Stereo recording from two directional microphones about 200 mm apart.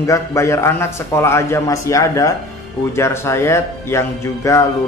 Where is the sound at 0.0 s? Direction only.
15° left (ahead or behind).